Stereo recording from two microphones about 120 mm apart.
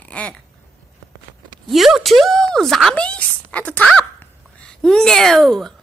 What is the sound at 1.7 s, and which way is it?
A woman's voice, centre (ahead or behind).